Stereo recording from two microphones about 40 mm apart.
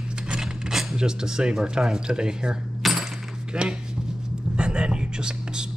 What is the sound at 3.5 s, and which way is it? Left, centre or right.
Speech, centre.